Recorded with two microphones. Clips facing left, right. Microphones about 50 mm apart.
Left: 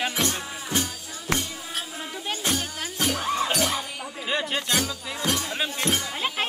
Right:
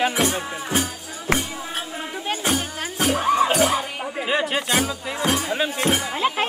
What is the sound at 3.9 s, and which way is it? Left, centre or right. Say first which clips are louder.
Music: right 7 dB; right.